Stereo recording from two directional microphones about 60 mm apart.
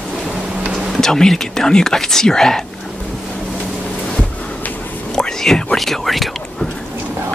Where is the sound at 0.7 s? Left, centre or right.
Centre.